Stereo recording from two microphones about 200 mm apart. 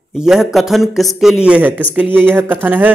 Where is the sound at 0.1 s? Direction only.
5° right (ahead or behind).